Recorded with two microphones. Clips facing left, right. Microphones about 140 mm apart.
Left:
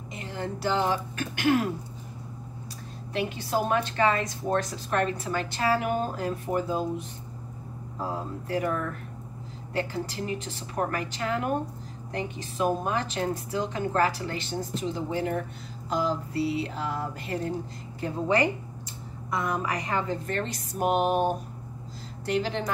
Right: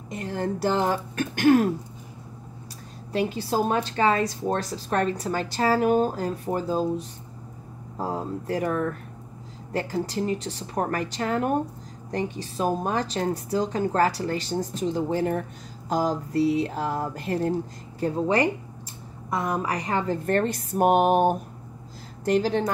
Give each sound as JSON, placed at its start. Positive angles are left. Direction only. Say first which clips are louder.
{"t": 0.1, "sound": "speech", "louder": "right 6 dB", "side_deg": -45}
{"t": 3.1, "sound": "a woman's voice", "louder": "right 4 dB", "side_deg": -35}
{"t": 9.8, "sound": "a woman's voice", "louder": "right 4 dB", "side_deg": -40}
{"t": 15.9, "sound": "a sound", "louder": "right 3 dB", "side_deg": -45}
{"t": 19.3, "sound": "a woman's voice", "louder": "right 2 dB", "side_deg": -35}
{"t": 20.2, "sound": "a sound", "louder": "right 8 dB", "side_deg": -50}